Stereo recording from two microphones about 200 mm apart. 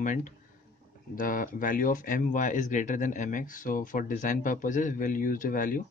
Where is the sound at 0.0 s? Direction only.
40° left (ahead or behind).